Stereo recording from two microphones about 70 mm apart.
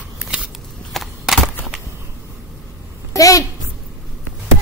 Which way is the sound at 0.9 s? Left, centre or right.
Centre.